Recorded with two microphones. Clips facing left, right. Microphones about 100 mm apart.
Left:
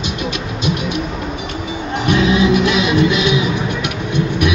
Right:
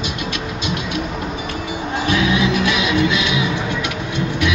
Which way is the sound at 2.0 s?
20° left (ahead or behind).